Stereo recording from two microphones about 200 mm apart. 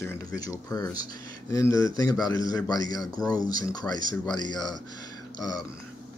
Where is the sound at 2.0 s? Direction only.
20° left (ahead or behind).